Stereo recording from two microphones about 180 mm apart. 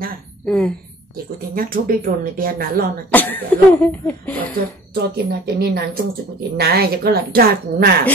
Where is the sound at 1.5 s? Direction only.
55° right (ahead or behind).